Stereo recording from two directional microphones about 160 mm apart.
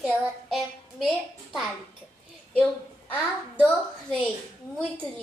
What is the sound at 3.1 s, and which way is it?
A child's voice, 10° left (ahead or behind).